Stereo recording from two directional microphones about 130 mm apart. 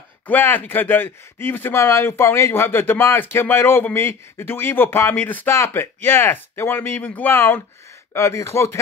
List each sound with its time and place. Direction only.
0.3 s speech: 15° left (ahead or behind)